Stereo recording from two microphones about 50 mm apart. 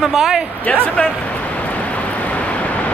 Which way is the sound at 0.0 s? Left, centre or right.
Centre.